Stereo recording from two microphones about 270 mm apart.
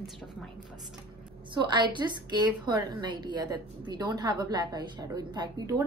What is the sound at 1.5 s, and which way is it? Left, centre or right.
A woman's voice, centre.